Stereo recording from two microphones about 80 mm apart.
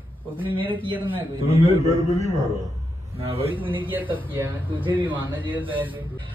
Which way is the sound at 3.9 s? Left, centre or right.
Right.